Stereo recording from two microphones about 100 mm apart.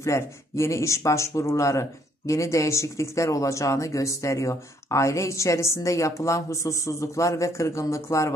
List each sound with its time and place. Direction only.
0.0 s speech: 30° left (ahead or behind)